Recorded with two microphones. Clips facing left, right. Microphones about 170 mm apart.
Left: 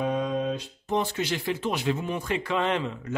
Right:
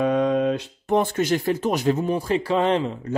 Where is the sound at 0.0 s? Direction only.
70° right (ahead or behind).